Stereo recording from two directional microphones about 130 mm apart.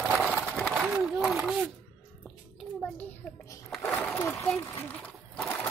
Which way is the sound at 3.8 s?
15° left (ahead or behind).